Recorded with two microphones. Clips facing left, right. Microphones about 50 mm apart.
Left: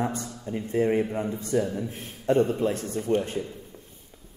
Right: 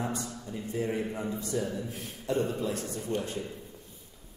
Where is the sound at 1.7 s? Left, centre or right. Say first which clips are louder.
Left 4 dB; left.